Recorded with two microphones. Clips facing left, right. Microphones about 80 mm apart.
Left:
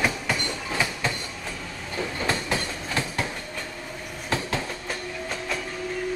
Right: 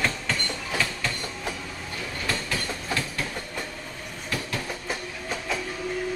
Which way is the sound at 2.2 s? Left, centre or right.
Left.